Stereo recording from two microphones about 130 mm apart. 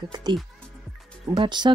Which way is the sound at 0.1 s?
35° right (ahead or behind).